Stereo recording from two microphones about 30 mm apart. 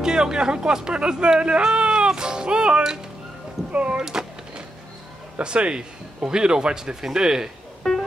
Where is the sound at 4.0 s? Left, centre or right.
Right.